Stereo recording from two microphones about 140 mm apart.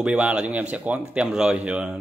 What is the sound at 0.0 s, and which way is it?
Speech, 10° right (ahead or behind).